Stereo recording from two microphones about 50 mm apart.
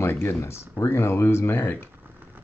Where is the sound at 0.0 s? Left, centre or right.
Left.